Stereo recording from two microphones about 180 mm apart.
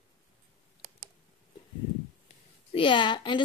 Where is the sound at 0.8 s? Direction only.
45° right (ahead or behind).